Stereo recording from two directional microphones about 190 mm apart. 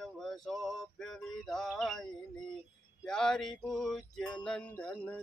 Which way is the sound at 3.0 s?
5° left (ahead or behind).